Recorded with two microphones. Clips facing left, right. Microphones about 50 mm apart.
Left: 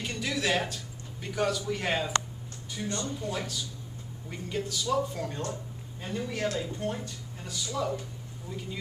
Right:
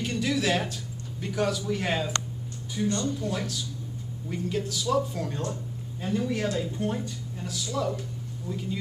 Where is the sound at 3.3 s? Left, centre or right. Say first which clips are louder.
Right 3 dB; centre.